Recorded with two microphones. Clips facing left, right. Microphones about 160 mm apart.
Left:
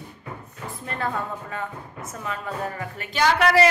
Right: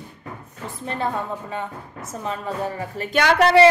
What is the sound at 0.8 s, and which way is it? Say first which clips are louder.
Speech: right 3 dB; 25° right (ahead or behind).